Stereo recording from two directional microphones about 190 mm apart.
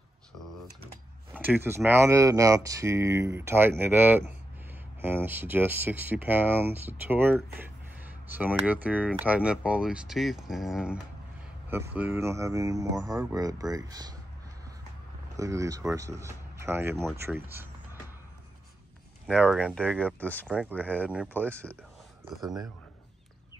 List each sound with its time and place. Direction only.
1.3 s speech: 10° right (ahead or behind)
15.3 s speech: 15° right (ahead or behind)
19.2 s speech: centre (ahead or behind)
20.4 s speech: 10° right (ahead or behind)
21.5 s speech: 5° left (ahead or behind)